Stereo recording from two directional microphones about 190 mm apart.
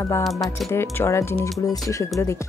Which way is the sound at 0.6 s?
15° left (ahead or behind).